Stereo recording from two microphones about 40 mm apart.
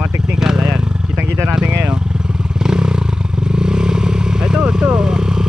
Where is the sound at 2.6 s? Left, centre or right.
Centre.